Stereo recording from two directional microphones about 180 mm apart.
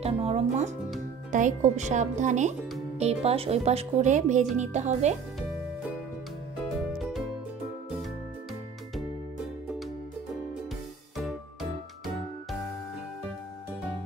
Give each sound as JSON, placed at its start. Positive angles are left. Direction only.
{"t": 0.0, "sound": "speech", "side_deg": -35}
{"t": 7.0, "sound": "music", "side_deg": 0}